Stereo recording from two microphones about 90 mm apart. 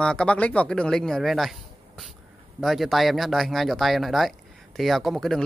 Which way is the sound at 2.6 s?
Centre (ahead or behind).